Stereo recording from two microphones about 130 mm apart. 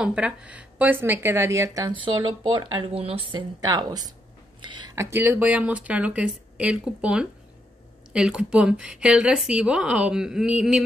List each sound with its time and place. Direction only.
0.0 s a woman's voice: 10° right (ahead or behind); by 4.1 s 30° right (ahead or behind)
4.6 s a sound: 35° right (ahead or behind)
4.9 s speech: 15° right (ahead or behind)